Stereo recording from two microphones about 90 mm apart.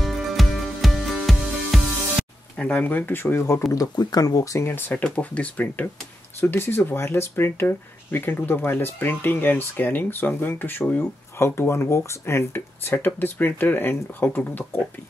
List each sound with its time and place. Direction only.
0.0 s music: centre (ahead or behind)
2.6 s speech: 15° left (ahead or behind)
3.7 s speech: 45° left (ahead or behind); by 4.9 s 25° left (ahead or behind)
4.9 s speech: 15° left (ahead or behind)
6.4 s speech: 25° left (ahead or behind)